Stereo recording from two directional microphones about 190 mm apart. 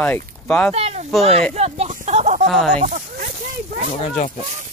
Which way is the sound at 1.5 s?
35° right (ahead or behind).